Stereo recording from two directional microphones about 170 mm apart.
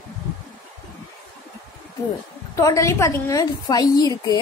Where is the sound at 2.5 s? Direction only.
20° left (ahead or behind).